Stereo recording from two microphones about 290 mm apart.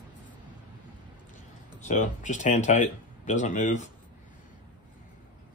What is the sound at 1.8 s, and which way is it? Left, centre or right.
Speech, left.